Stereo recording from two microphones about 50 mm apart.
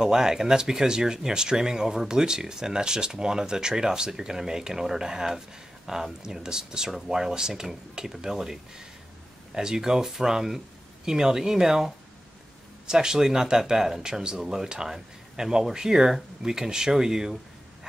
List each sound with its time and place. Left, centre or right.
0.0 s speech: centre